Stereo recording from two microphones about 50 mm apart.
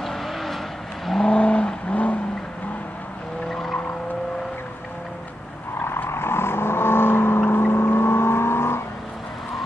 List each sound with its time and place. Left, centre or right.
0.0 s vehicle: centre
1.2 s vehicle: centre
3.4 s vehicle: centre
6.0 s vehicle: left